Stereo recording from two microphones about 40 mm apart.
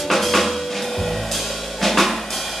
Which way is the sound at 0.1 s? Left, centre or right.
Centre.